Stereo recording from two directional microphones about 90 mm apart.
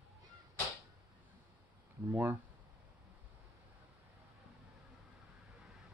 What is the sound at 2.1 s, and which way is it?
Speech, 20° right (ahead or behind).